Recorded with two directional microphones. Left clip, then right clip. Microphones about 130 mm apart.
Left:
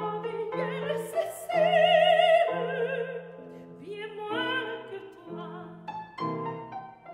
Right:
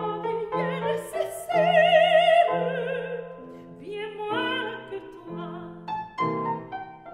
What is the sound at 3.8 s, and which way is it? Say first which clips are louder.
Music: right 5 dB; 50° right (ahead or behind).